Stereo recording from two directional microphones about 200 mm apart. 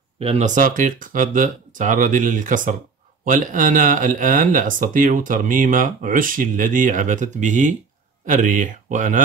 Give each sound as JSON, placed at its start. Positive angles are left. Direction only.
{"t": 0.2, "sound": "speech", "side_deg": -30}